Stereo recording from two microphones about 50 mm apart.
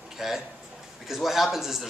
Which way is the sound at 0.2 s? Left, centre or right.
Centre.